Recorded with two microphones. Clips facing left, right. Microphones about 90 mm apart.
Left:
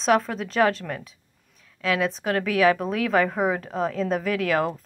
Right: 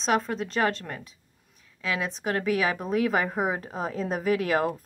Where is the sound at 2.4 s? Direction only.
75° left (ahead or behind).